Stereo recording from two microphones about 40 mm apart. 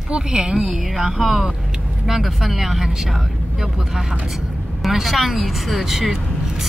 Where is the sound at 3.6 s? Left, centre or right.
Centre.